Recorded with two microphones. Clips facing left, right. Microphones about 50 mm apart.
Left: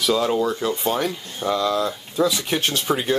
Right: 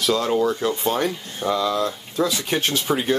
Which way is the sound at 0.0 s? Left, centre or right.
Centre.